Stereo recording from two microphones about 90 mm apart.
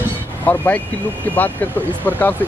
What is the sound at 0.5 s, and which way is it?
Speech, 20° left (ahead or behind).